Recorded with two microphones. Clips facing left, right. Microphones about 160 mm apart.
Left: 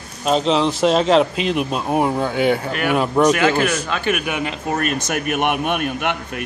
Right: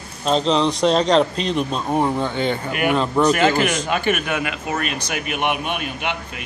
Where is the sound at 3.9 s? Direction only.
Centre (ahead or behind).